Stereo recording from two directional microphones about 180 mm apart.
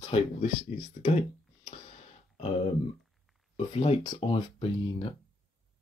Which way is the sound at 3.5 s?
30° left (ahead or behind).